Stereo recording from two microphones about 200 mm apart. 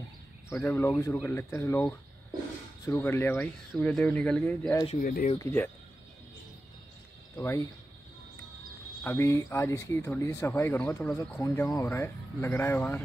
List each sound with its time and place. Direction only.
0.5 s speech: 15° left (ahead or behind)
5.0 s speech: 45° left (ahead or behind)
5.4 s speech: 10° left (ahead or behind)
7.3 s speech: 15° left (ahead or behind)
9.0 s speech: 15° left (ahead or behind)